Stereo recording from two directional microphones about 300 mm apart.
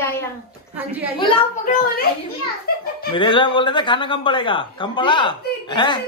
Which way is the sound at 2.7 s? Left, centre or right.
Left.